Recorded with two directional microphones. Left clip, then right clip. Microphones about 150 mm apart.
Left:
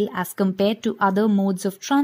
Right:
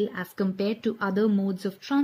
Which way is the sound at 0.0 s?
55° left (ahead or behind).